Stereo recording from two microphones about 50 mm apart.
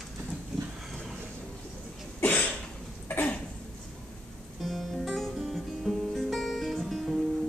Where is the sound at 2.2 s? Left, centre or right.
Left.